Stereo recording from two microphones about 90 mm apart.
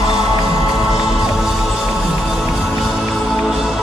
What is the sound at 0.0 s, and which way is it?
Music, 5° right (ahead or behind).